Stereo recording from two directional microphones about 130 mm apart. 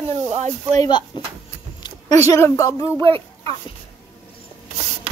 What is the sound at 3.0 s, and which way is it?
Speech, 40° right (ahead or behind).